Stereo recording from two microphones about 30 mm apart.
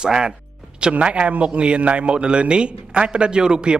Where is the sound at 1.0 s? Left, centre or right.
Right.